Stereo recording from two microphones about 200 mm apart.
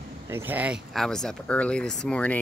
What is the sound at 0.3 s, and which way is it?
Speech, 10° right (ahead or behind).